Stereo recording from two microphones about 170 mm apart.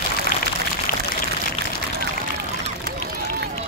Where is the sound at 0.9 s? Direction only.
60° left (ahead or behind).